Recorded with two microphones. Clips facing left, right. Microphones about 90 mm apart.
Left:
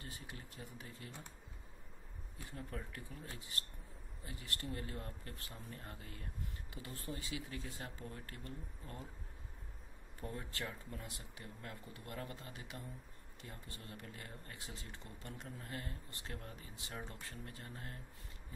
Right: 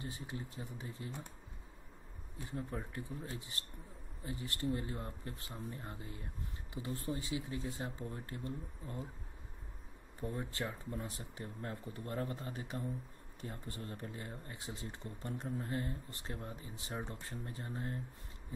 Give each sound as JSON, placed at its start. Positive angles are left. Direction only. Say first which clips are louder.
{"t": 0.0, "sound": "speech", "louder": "right 7 dB", "side_deg": -25}
{"t": 2.3, "sound": "speech", "louder": "right 5 dB", "side_deg": -25}
{"t": 10.3, "sound": "speech", "louder": "right 4 dB", "side_deg": -25}